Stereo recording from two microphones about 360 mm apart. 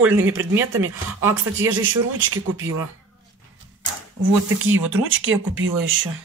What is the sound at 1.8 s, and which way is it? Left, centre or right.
Speech, right.